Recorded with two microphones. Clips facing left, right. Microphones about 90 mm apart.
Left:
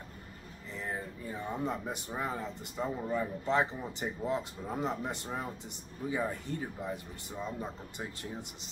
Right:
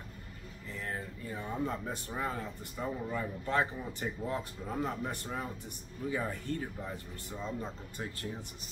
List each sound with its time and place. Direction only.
0.7 s speech: 15° left (ahead or behind)